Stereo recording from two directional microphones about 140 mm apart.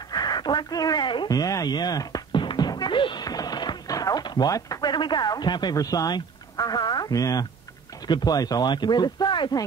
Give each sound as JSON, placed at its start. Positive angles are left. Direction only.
{"t": 0.1, "sound": "speech", "side_deg": 30}